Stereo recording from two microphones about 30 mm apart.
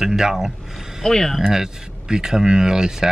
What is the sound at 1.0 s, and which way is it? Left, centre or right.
Speech, left.